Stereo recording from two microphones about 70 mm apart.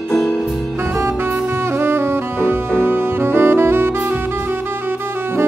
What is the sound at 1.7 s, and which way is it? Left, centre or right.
Saxophone, right.